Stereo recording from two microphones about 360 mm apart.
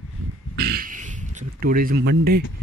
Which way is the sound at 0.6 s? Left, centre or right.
Right.